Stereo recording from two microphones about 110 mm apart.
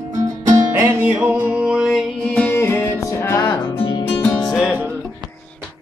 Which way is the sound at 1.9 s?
10° left (ahead or behind).